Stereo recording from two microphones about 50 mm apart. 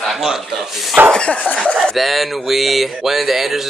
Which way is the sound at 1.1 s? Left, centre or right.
Centre.